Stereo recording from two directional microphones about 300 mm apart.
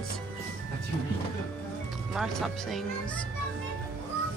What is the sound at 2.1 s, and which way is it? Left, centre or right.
Speech, centre.